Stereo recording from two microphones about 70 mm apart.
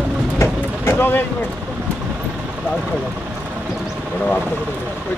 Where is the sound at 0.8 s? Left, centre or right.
Left.